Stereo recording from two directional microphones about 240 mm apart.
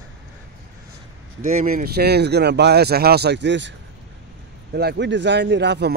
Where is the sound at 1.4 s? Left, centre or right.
Right.